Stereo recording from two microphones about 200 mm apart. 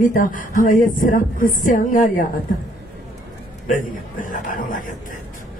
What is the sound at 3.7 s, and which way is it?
A woman's voice, 40° left (ahead or behind).